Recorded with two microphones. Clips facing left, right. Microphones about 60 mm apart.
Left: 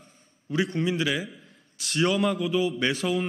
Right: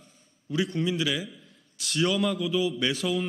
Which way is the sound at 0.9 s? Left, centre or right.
Left.